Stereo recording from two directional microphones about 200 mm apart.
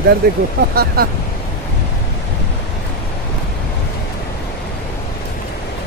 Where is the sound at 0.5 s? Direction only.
50° right (ahead or behind).